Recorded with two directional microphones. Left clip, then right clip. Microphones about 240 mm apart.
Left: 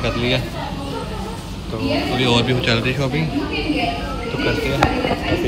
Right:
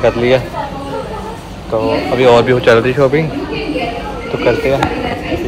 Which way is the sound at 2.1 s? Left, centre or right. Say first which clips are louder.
Right 12 dB; centre.